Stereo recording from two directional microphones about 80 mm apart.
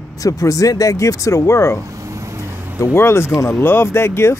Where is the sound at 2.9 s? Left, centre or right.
Left.